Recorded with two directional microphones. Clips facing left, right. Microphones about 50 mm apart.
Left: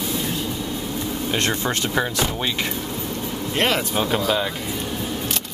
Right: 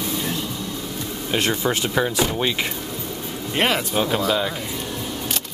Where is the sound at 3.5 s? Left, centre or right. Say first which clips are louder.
Right 1 dB; centre.